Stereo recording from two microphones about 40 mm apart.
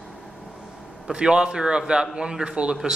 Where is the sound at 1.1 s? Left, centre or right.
Right.